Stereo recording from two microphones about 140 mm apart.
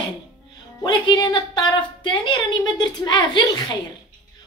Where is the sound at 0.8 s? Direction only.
30° left (ahead or behind).